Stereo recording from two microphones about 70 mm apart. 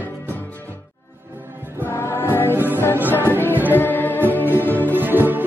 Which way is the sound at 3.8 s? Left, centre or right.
Left.